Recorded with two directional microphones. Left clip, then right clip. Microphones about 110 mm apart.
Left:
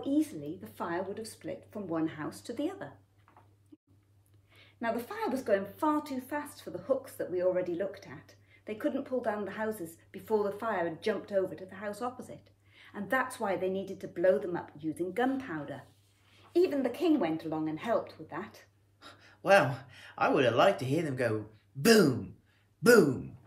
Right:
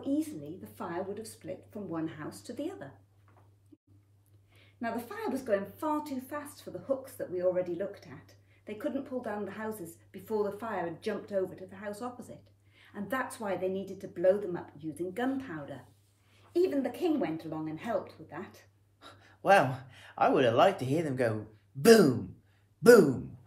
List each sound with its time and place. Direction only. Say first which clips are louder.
0.0 s speech: left 2 dB; 30° left (ahead or behind)
3.7 s a sound: left 2 dB; 30° left (ahead or behind)
4.6 s speech: left 3 dB; 30° left (ahead or behind)
18.9 s speech: even; 40° right (ahead or behind)